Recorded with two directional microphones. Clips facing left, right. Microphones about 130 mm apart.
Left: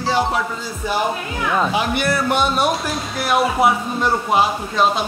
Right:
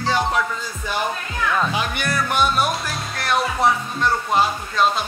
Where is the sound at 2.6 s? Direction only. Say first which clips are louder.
Left 3 dB; centre (ahead or behind).